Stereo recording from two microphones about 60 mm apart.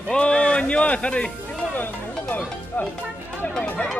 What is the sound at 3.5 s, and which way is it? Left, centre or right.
Speech, centre.